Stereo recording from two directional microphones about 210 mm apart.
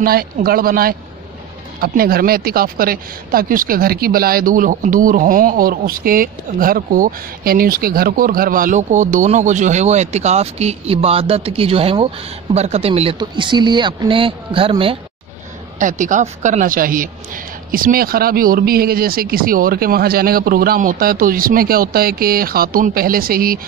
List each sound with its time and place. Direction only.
0.0 s a woman's voice: 45° right (ahead or behind); by 15.0 s 25° right (ahead or behind)
15.8 s a woman's voice: 40° right (ahead or behind)